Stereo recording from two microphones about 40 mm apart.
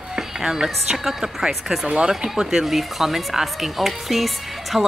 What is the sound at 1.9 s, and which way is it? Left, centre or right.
Speech, right.